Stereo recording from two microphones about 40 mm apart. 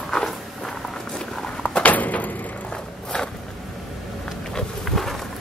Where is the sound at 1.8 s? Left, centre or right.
Left.